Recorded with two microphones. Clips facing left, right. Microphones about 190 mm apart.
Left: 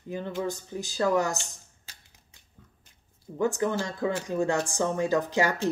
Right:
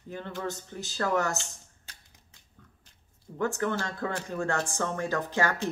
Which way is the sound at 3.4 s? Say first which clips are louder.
Left 3 dB; 15° left (ahead or behind).